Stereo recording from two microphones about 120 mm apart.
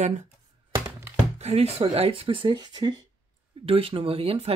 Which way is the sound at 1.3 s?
60° right (ahead or behind).